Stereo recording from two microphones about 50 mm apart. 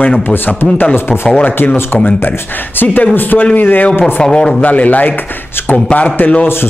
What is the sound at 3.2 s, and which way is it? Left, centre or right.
Speech, left.